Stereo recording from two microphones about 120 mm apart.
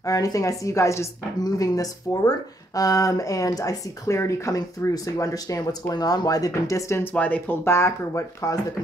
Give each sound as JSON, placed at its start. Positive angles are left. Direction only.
{"t": 0.0, "sound": "speech", "side_deg": 30}
{"t": 7.2, "sound": "speech", "side_deg": 15}